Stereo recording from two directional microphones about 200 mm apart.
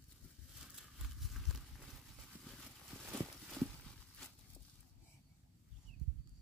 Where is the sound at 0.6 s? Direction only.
Centre (ahead or behind).